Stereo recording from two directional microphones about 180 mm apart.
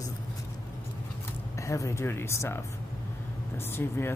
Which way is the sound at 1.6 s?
15° left (ahead or behind).